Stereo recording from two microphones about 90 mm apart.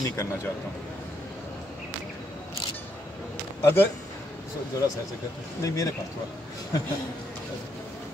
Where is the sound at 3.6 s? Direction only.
30° left (ahead or behind).